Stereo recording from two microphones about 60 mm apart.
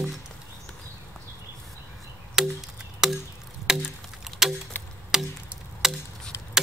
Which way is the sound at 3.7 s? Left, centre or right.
Centre.